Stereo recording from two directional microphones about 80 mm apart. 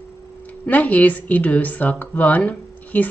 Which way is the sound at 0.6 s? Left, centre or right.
Centre.